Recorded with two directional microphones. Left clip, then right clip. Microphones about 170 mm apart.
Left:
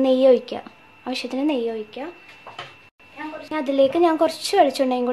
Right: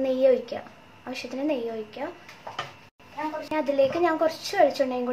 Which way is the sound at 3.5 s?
70° left (ahead or behind).